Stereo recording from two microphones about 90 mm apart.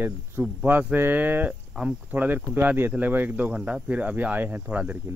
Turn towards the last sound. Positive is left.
turn(degrees=-15)  # may be behind; listen again after turning